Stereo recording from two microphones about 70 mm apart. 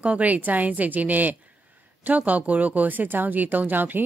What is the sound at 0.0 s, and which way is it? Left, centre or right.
A woman's voice, right.